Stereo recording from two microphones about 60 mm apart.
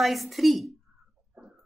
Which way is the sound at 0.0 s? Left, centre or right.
Centre.